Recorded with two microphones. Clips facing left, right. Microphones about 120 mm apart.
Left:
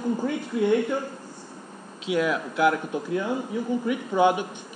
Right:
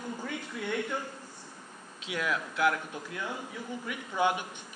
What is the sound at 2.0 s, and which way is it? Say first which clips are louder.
A man's voice: left 9 dB; 20° left (ahead or behind).